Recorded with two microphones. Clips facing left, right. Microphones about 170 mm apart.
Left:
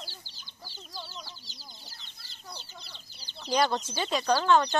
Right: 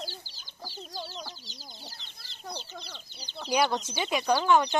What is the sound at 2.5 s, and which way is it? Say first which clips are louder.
Speech: right 6 dB; 40° right (ahead or behind).